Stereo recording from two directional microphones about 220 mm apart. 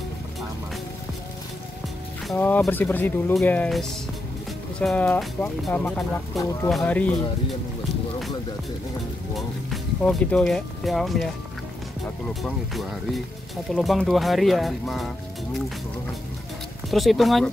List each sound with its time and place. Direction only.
2.2 s speech: 5° left (ahead or behind)
9.3 s speech: centre (ahead or behind)
12.4 s speech: centre (ahead or behind)
16.9 s speech: centre (ahead or behind)